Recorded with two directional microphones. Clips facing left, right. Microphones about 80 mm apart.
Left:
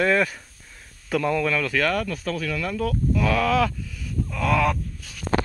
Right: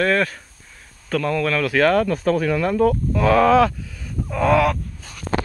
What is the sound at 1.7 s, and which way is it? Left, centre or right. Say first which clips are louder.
Speech: right 7 dB; right.